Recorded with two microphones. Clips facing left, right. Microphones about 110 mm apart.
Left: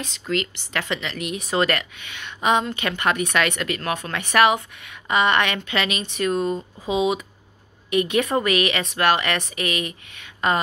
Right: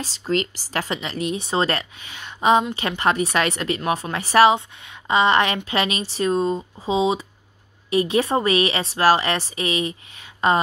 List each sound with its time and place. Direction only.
0.0 s a woman's voice: 35° right (ahead or behind)